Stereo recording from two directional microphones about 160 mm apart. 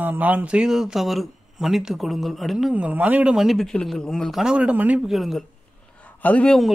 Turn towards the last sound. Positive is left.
turn(degrees=5)  # may be behind; listen again after turning